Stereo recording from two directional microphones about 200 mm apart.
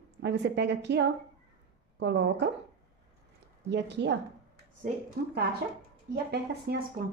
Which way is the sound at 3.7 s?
60° right (ahead or behind).